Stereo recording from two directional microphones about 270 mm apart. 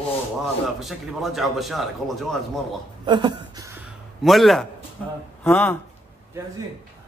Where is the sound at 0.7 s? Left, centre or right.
Centre.